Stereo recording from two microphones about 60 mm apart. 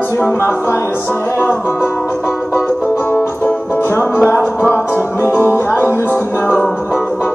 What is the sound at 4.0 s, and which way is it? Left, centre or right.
Music, left.